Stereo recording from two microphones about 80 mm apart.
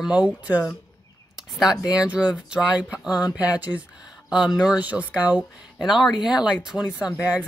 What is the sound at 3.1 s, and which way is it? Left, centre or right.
Speech, left.